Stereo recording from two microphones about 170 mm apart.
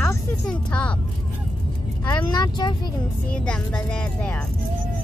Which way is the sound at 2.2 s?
25° left (ahead or behind).